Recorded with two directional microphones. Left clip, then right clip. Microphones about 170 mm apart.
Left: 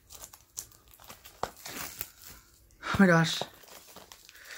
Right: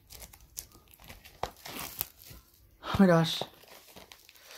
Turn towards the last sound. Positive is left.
turn(degrees=0)  # may be behind; listen again after turning